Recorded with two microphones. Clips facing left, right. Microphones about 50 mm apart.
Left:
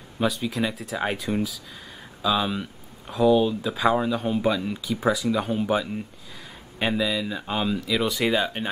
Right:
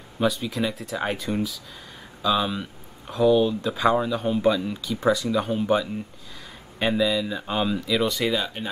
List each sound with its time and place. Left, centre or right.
0.2 s speech: centre
8.3 s speech: left